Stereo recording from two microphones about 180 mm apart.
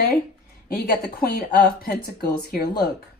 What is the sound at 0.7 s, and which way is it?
Speech, 55° left (ahead or behind).